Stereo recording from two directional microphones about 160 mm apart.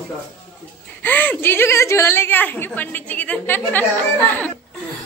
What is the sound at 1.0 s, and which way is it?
A woman's voice, 10° left (ahead or behind).